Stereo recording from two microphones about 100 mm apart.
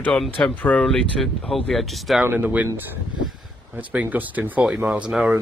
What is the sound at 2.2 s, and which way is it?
Speech, 15° right (ahead or behind).